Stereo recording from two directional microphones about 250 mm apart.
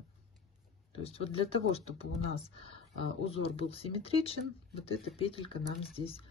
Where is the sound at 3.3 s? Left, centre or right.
Left.